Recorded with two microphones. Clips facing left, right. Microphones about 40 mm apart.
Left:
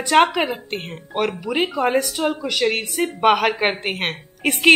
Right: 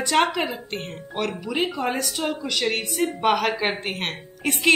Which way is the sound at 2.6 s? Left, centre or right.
Centre.